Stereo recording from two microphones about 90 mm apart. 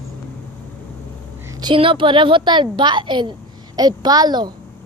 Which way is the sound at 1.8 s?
70° right (ahead or behind).